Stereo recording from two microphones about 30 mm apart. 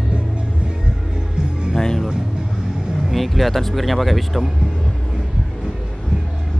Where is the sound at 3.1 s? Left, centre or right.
Centre.